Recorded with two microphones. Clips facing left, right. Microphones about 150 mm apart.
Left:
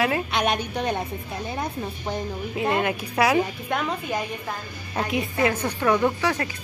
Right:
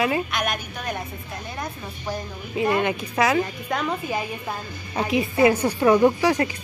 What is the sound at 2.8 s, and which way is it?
A woman's voice, 5° left (ahead or behind).